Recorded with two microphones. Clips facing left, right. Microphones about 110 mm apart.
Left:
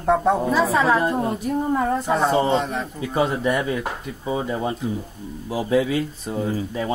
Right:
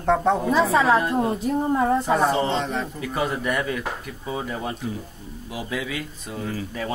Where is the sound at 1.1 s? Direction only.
20° right (ahead or behind).